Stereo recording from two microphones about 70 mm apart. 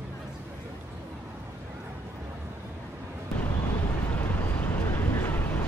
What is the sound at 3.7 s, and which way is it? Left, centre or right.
Vehicle, left.